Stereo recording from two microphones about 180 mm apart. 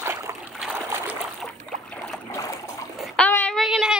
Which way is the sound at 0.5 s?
5° right (ahead or behind).